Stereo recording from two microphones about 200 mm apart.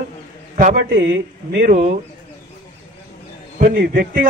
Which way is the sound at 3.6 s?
45° right (ahead or behind).